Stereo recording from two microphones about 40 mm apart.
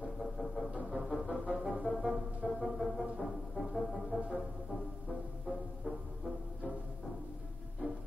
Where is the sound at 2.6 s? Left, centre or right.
Centre.